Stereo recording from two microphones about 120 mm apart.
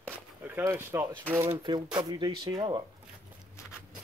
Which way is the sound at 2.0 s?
35° right (ahead or behind).